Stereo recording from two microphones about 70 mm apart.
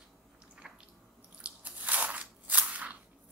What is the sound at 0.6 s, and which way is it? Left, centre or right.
Squish, centre.